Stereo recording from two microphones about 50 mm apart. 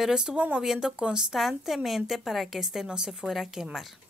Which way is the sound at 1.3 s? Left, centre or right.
Centre.